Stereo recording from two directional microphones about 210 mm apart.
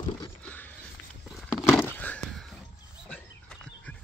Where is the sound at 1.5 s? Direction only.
10° left (ahead or behind).